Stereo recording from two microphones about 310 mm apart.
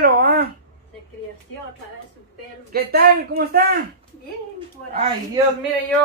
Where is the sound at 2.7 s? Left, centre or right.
Right.